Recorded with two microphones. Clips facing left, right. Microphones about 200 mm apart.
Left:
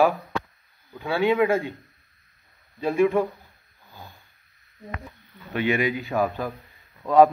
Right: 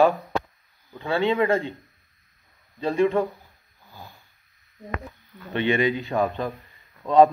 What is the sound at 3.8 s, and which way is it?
Roaring cats, 15° left (ahead or behind).